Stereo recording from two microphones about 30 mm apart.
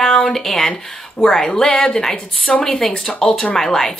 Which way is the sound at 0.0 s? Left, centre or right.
Centre.